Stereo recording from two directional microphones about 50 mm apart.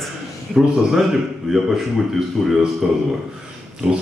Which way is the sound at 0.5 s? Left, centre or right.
Centre.